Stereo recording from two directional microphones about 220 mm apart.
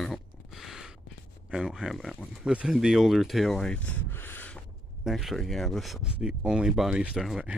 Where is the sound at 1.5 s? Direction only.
Centre (ahead or behind).